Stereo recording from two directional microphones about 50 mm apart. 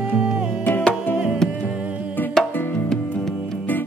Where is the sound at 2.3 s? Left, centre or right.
Centre.